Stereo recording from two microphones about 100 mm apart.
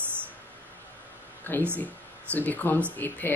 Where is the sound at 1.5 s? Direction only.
20° left (ahead or behind).